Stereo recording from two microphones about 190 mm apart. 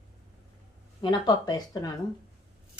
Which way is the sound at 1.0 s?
25° left (ahead or behind).